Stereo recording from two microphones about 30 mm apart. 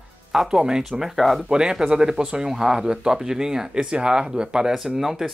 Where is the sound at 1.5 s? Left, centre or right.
Right.